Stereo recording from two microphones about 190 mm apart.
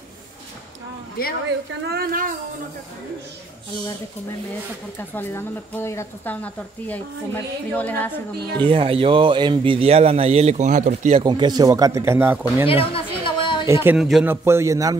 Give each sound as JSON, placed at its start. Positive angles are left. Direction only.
{"t": 1.2, "sound": "a woman's voice", "side_deg": 50}
{"t": 1.9, "sound": "speech", "side_deg": -50}
{"t": 4.9, "sound": "speech", "side_deg": 10}
{"t": 8.6, "sound": "a man's voice", "side_deg": -30}
{"t": 11.2, "sound": "speech", "side_deg": -25}
{"t": 12.9, "sound": "a sound", "side_deg": 25}
{"t": 13.7, "sound": "speech", "side_deg": -15}
{"t": 13.9, "sound": "a man's voice", "side_deg": 0}
{"t": 14.3, "sound": "speech", "side_deg": -15}